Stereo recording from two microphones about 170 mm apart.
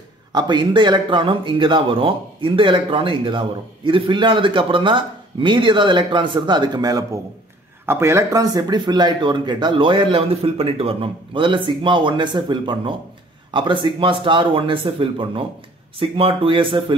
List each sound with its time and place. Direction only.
0.3 s speech: 25° right (ahead or behind)